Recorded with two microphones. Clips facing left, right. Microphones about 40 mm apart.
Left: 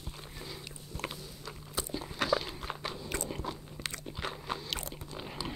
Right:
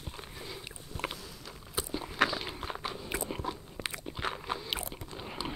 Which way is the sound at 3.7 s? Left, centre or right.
Centre.